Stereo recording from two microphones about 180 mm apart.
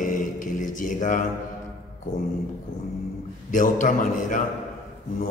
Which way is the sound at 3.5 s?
45° left (ahead or behind).